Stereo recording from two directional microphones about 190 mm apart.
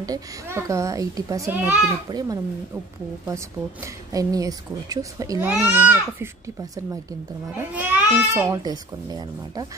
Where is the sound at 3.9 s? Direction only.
15° right (ahead or behind).